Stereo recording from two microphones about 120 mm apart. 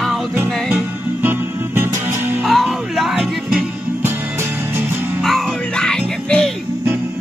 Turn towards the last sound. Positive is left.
turn(degrees=5)  # may be behind; listen again after turning